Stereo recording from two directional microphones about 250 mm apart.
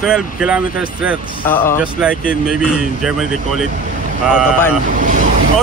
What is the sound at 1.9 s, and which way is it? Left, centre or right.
Speech, centre.